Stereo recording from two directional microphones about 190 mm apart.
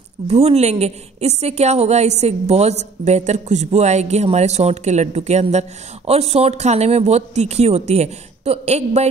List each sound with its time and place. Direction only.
0.3 s a woman's voice: 35° right (ahead or behind)